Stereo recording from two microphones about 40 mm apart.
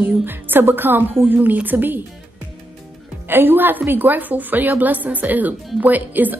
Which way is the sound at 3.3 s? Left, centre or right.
Right.